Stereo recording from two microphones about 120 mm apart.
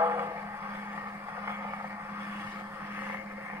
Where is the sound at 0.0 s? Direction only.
20° right (ahead or behind).